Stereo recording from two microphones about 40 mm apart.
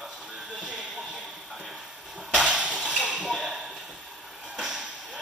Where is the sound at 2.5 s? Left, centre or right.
Centre.